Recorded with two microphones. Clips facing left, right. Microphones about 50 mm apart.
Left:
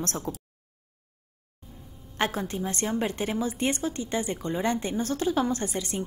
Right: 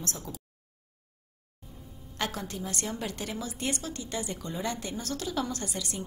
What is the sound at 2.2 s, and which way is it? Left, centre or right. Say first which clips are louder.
A woman's voice: left 6 dB; left.